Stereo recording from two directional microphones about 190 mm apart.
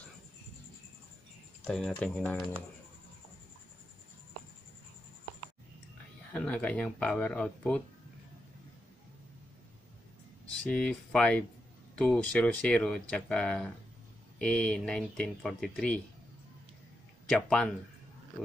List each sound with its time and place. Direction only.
1.6 s speech: 5° left (ahead or behind)
6.3 s speech: 5° left (ahead or behind)
10.6 s speech: 5° left (ahead or behind)
17.3 s speech: 5° left (ahead or behind)